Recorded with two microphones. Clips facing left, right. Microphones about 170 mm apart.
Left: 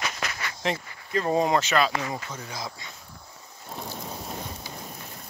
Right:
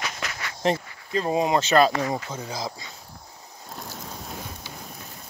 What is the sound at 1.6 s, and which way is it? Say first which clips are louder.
Speech: right 5 dB; 35° right (ahead or behind).